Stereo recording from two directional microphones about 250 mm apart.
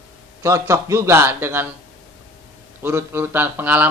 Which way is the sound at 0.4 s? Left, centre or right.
Centre.